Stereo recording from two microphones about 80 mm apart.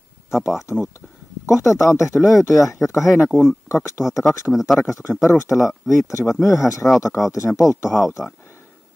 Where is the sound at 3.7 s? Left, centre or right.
Left.